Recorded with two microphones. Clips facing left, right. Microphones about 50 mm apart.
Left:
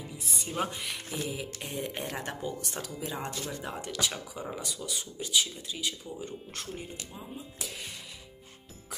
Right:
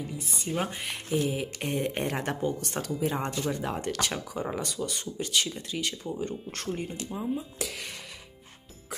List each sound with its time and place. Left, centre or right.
0.3 s speech: right
7.3 s speech: right